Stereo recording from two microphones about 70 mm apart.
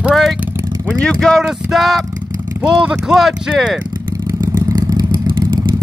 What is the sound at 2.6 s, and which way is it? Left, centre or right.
Speech, centre.